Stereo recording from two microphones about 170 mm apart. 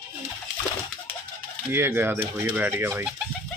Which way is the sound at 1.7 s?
15° right (ahead or behind).